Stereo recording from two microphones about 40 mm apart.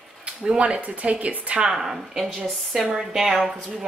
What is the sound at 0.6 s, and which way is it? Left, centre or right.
Speech, right.